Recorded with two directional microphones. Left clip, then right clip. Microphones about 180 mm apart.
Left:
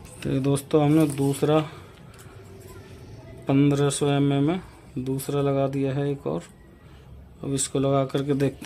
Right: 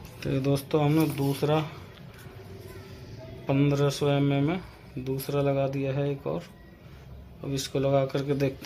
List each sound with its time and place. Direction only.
0.2 s speech: 65° left (ahead or behind)
3.4 s speech: 65° left (ahead or behind)
7.4 s speech: 65° left (ahead or behind)